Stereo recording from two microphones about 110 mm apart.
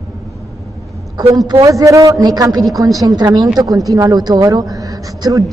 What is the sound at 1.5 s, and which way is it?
A woman's voice, 30° right (ahead or behind).